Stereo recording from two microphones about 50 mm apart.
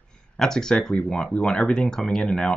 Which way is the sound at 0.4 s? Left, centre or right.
Centre.